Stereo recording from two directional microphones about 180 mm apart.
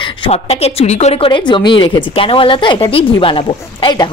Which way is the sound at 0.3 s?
35° left (ahead or behind).